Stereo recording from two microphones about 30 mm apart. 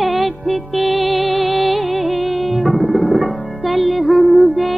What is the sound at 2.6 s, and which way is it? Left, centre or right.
Tabla, right.